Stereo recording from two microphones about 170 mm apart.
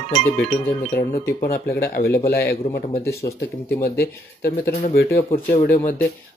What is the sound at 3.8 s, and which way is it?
Speech, 65° left (ahead or behind).